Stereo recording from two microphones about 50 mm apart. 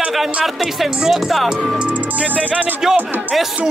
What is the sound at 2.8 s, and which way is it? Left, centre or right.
Speech, centre.